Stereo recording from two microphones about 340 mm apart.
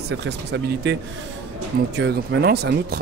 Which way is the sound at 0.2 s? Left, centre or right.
Right.